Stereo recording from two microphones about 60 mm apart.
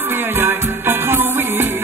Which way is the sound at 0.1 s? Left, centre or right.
Right.